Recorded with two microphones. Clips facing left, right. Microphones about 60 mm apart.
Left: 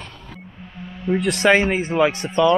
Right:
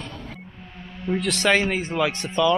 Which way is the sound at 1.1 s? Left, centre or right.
Centre.